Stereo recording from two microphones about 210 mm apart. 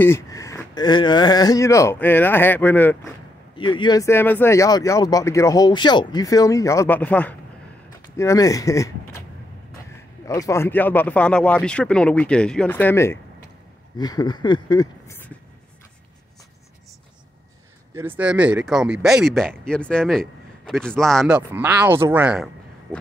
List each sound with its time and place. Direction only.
0.0 s speech: 15° left (ahead or behind)
3.5 s speech: 25° left (ahead or behind)
10.2 s speech: 15° left (ahead or behind)
17.9 s speech: 10° right (ahead or behind)